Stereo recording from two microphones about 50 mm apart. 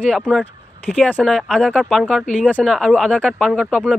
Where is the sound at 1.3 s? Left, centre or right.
Centre.